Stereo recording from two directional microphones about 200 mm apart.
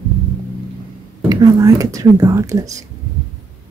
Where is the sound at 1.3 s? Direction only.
20° right (ahead or behind).